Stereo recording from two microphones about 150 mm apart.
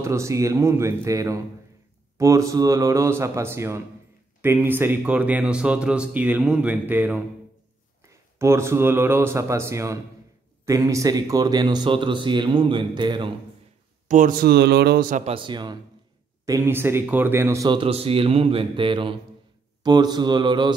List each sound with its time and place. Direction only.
0.0 s speech: 20° right (ahead or behind)
14.0 s speech: 60° right (ahead or behind)
15.2 s speech: 35° right (ahead or behind)
16.4 s speech: 20° right (ahead or behind)
17.6 s speech: 35° right (ahead or behind)